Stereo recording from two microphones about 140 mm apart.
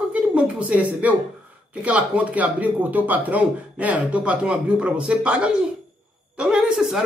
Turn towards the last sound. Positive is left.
turn(degrees=0)  # may be behind; listen again after turning